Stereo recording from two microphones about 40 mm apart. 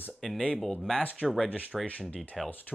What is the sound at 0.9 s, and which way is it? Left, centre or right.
Speech, left.